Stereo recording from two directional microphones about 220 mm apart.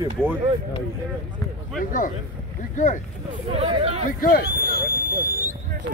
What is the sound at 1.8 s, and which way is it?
Speech, 40° left (ahead or behind).